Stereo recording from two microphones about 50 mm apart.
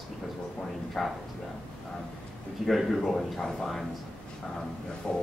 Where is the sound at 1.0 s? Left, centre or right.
Centre.